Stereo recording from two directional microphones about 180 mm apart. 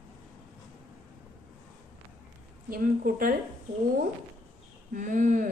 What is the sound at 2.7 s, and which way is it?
Speech, 50° right (ahead or behind).